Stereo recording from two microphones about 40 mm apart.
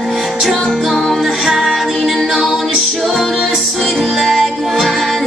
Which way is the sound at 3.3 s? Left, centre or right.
Centre.